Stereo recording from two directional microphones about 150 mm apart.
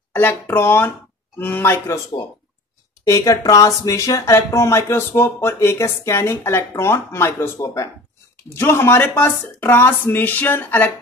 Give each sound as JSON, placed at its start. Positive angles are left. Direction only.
{"t": 0.1, "sound": "speech", "side_deg": 15}
{"t": 3.1, "sound": "speech", "side_deg": 25}